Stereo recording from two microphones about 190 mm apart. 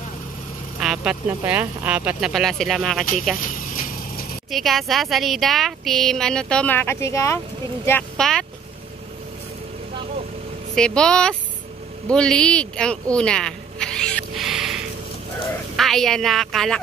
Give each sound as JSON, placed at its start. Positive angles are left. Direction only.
{"t": 0.7, "sound": "speech", "side_deg": -5}
{"t": 3.4, "sound": "vehicle", "side_deg": 45}
{"t": 4.5, "sound": "speech", "side_deg": 0}
{"t": 10.7, "sound": "speech", "side_deg": 5}
{"t": 12.1, "sound": "a sound", "side_deg": 5}
{"t": 15.7, "sound": "speech", "side_deg": 0}